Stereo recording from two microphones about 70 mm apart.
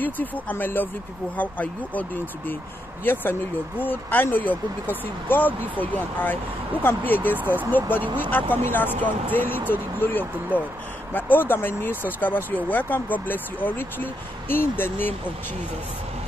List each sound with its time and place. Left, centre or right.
0.0 s speech: left